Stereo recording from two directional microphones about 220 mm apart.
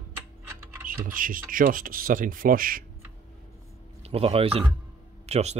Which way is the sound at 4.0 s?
25° right (ahead or behind).